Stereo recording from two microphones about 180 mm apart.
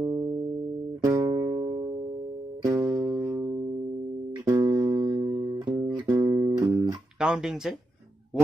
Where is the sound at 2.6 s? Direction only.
20° right (ahead or behind).